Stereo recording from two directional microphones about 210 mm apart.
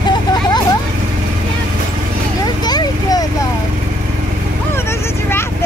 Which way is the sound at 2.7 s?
20° left (ahead or behind).